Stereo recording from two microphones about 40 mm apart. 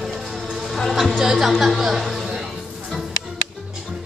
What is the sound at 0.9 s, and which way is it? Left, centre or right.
Speech, centre.